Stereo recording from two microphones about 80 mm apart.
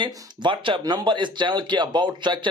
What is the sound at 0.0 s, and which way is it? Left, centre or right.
Speech, right.